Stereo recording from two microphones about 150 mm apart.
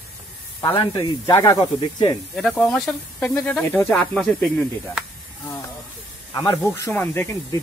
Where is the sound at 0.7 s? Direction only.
25° left (ahead or behind).